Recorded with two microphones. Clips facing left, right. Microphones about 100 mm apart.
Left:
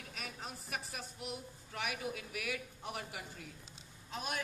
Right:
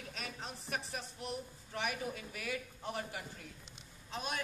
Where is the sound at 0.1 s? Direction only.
5° left (ahead or behind).